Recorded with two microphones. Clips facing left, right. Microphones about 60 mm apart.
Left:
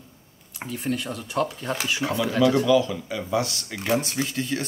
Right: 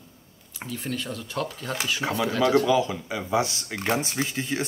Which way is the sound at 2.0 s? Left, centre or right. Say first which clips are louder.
Left 2 dB; right.